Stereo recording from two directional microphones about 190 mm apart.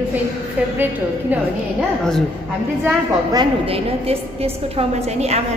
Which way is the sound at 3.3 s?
25° right (ahead or behind).